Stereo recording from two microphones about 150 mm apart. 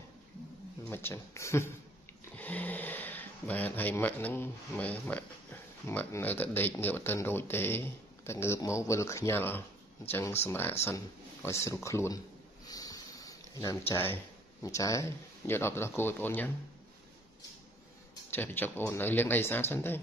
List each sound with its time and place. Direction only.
0.8 s speech: 15° left (ahead or behind)
12.6 s a sound: 25° left (ahead or behind)
14.6 s speech: 20° left (ahead or behind)
18.3 s speech: 15° left (ahead or behind)